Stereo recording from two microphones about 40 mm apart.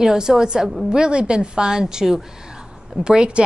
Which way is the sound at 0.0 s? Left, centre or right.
Centre.